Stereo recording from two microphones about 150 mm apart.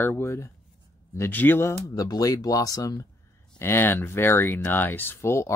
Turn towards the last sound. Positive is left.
turn(degrees=15)  # may be behind; listen again after turning